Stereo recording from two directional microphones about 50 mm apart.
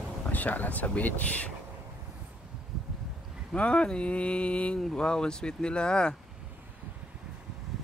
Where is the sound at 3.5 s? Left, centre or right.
Left.